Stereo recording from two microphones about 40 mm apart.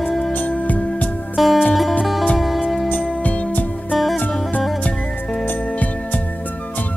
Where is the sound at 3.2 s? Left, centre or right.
Left.